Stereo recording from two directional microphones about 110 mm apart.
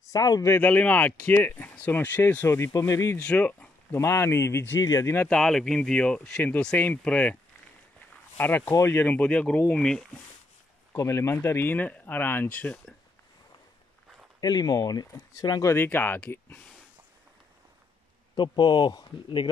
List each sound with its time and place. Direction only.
0.0 s speech: 35° left (ahead or behind)
0.6 s speech: 15° left (ahead or behind)
3.2 s speech: 10° left (ahead or behind)
4.0 s speech: 25° left (ahead or behind)
5.3 s speech: 5° left (ahead or behind)
8.4 s speech: 15° left (ahead or behind)
10.9 s speech: 30° left (ahead or behind)
14.4 s speech: 35° left (ahead or behind)
15.7 s speech: 20° left (ahead or behind)
18.3 s speech: 45° left (ahead or behind)